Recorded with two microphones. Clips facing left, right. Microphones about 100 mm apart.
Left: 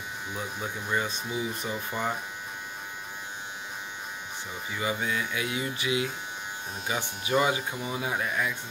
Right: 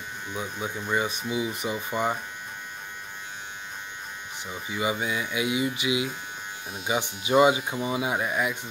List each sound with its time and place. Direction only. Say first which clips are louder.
0.3 s speech: right 3 dB; centre (ahead or behind)
1.0 s mantra: right 3 dB; 10° right (ahead or behind)
4.7 s mantra: right 2 dB; 15° right (ahead or behind)
6.7 s speech: right 5 dB; 5° right (ahead or behind)
7.4 s mantra: right 6 dB; 20° right (ahead or behind)